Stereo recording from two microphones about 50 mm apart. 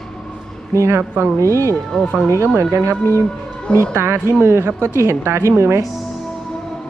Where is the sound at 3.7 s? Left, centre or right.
Right.